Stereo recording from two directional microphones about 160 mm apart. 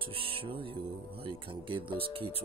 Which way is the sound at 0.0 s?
35° right (ahead or behind).